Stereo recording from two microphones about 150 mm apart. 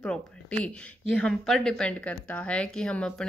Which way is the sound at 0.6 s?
10° left (ahead or behind).